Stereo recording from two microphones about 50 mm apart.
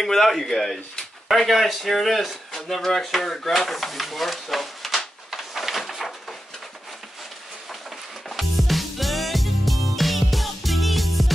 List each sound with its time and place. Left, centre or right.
0.0 s speech: centre
8.3 s music: centre